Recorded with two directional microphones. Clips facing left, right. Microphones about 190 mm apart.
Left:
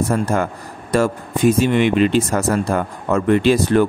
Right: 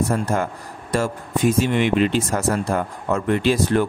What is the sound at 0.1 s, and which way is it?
Speech, 80° left.